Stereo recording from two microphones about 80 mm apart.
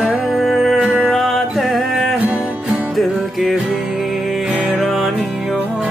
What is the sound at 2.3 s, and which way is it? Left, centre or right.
Music, centre.